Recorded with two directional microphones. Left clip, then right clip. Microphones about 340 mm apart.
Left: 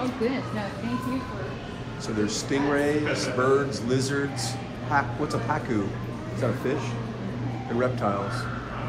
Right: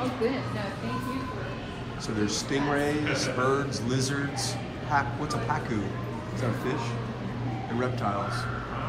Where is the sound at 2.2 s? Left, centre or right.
Centre.